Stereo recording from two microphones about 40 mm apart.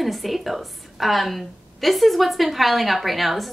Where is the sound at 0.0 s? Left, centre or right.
Centre.